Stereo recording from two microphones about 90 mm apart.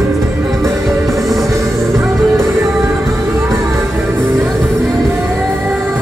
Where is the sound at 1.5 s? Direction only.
35° right (ahead or behind).